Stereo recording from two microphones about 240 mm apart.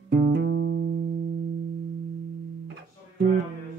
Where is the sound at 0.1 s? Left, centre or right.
Right.